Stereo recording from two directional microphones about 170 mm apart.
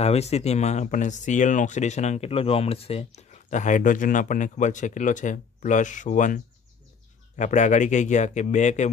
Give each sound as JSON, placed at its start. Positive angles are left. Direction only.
{"t": 0.0, "sound": "speech", "side_deg": 40}